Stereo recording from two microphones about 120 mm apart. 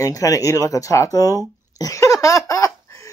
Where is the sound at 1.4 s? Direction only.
30° left (ahead or behind).